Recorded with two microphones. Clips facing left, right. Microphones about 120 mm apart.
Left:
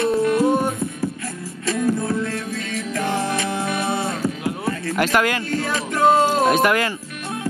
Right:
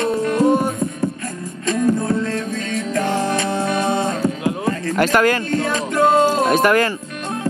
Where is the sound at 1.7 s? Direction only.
45° right (ahead or behind).